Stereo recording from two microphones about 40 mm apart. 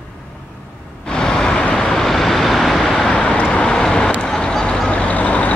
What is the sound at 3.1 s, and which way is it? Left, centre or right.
Vehicle, centre.